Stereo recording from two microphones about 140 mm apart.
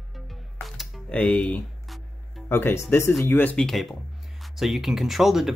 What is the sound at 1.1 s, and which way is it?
Speech, 10° left (ahead or behind).